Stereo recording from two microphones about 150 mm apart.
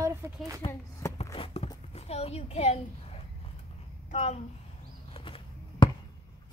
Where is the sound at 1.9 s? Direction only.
45° left (ahead or behind).